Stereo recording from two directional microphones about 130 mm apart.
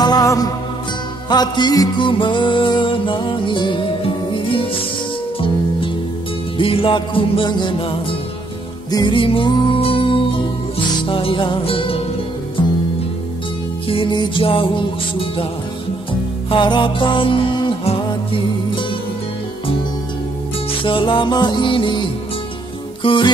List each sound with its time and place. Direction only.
0.0 s music: 30° left (ahead or behind)
6.6 s music: 45° left (ahead or behind)
8.9 s music: 40° left (ahead or behind)
13.8 s music: 40° left (ahead or behind)
20.8 s music: 40° left (ahead or behind)